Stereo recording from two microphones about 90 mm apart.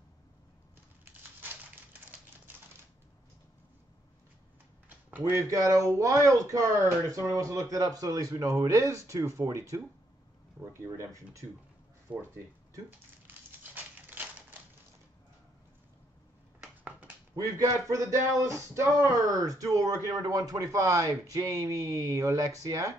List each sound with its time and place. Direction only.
4.8 s a sound: 20° right (ahead or behind)
5.5 s speech: 40° right (ahead or behind)
12.1 s speech: 15° right (ahead or behind)
14.1 s typewriter: 20° right (ahead or behind)
16.6 s a sound: 15° right (ahead or behind)
17.4 s speech: 35° right (ahead or behind)